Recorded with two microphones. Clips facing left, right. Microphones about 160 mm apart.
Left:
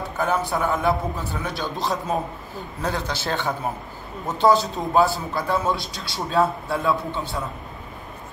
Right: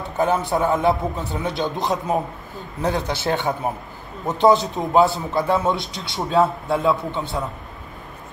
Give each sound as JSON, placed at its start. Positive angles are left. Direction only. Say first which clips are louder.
{"t": 0.0, "sound": "a man's voice", "louder": "right 3 dB", "side_deg": -20}